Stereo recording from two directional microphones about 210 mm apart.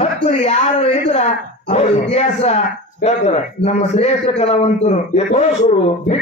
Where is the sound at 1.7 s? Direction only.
30° left (ahead or behind).